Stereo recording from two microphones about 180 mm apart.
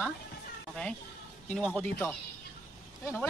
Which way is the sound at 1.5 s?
5° left (ahead or behind).